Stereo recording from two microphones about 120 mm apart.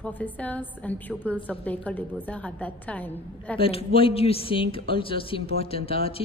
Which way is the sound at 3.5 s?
50° left (ahead or behind).